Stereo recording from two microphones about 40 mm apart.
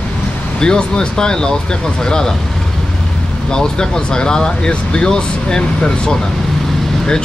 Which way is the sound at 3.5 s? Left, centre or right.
Centre.